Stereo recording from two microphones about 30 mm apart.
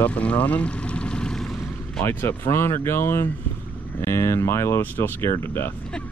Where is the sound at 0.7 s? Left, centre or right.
Left.